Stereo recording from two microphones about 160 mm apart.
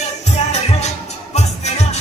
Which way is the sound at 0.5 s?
40° left (ahead or behind).